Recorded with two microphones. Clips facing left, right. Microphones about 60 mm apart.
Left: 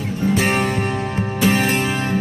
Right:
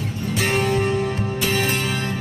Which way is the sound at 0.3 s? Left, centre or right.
Left.